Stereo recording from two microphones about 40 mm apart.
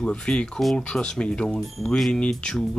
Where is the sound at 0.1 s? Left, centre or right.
Left.